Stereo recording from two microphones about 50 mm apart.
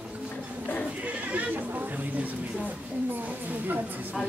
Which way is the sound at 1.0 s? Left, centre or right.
Right.